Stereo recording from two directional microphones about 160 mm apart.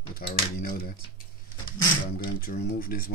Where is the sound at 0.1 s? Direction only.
65° left (ahead or behind).